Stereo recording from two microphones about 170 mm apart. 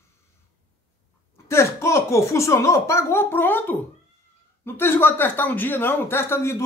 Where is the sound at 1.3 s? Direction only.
15° left (ahead or behind).